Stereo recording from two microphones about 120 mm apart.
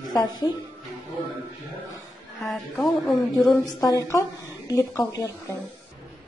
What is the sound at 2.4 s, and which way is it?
Speech, centre (ahead or behind).